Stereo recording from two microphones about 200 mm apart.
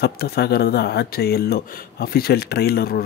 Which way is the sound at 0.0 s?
50° left (ahead or behind).